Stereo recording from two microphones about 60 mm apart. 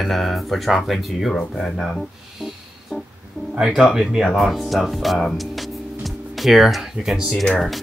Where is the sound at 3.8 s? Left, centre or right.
Centre.